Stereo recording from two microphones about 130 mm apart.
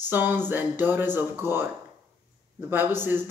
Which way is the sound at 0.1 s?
15° right (ahead or behind).